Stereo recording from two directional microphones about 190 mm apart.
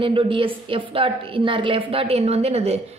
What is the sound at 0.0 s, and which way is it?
A woman's voice, 25° right (ahead or behind).